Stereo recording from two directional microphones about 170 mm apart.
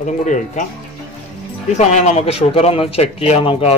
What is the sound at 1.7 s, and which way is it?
A man's voice, 40° left (ahead or behind).